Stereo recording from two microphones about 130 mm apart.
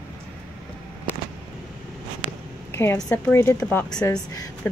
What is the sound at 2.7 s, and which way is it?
A woman's voice, 20° left (ahead or behind).